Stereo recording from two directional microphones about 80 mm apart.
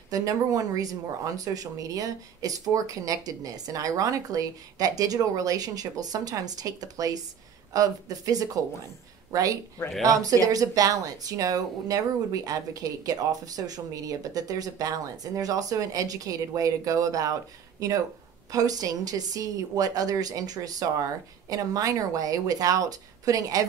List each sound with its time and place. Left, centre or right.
0.1 s speech: right